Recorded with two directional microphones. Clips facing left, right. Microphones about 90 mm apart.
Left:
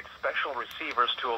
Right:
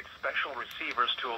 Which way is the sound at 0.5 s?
35° left (ahead or behind).